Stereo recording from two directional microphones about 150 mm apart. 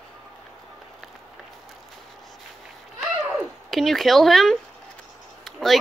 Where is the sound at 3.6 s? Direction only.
Centre (ahead or behind).